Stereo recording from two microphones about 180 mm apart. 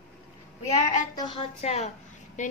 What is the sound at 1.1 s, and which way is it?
Child singing, 25° left (ahead or behind).